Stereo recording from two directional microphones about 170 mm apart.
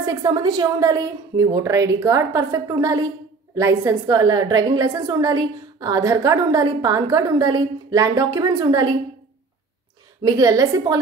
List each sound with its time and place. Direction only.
0.0 s a woman's voice: 20° right (ahead or behind)
10.2 s a woman's voice: 20° right (ahead or behind)